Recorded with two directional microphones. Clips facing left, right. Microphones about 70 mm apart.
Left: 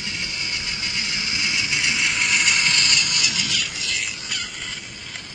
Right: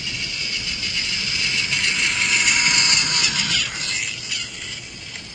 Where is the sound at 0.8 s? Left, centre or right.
Left.